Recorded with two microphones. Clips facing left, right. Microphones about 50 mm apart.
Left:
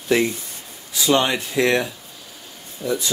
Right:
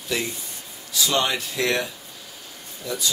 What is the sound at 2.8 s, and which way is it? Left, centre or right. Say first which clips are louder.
Speech: left 7 dB; left.